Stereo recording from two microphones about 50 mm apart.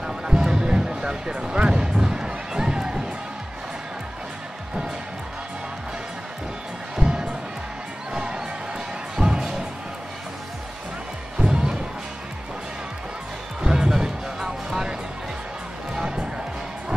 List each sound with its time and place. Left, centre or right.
0.0 s music: centre
7.0 s music: centre
8.1 s crowd: centre
9.1 s music: centre
11.3 s music: centre
13.6 s music: centre